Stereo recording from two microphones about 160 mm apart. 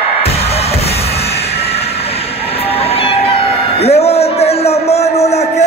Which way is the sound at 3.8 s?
40° left (ahead or behind).